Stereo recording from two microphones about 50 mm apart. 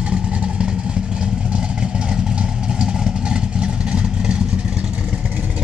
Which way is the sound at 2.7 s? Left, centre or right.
Centre.